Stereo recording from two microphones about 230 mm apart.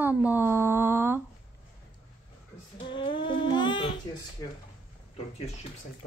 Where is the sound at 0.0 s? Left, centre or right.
Centre.